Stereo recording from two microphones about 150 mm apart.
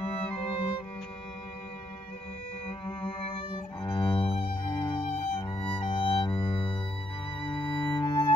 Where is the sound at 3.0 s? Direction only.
35° left (ahead or behind).